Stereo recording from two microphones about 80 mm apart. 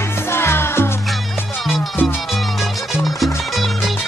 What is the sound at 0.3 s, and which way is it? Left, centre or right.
Music, left.